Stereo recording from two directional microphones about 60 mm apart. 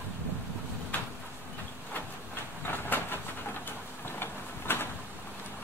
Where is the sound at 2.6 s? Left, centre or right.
Left.